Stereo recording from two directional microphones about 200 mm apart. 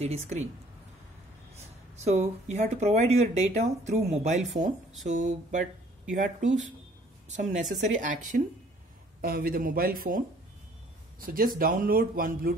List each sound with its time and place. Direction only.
0.0 s speech: 35° right (ahead or behind)
2.0 s speech: 30° right (ahead or behind)